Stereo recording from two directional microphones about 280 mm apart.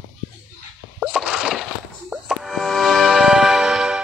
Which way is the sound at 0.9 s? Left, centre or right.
Centre.